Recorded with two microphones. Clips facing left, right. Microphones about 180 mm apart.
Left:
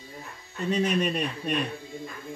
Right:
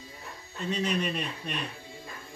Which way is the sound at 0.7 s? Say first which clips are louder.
Left 4 dB; 50° left (ahead or behind).